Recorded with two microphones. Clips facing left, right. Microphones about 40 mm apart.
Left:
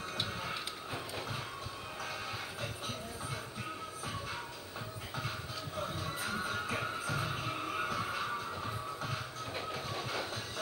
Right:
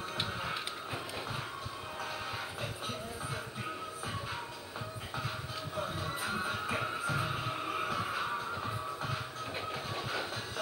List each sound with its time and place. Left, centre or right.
5.8 s music: right
9.7 s train: right